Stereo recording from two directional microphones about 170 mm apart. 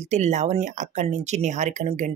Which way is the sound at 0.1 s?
40° right (ahead or behind).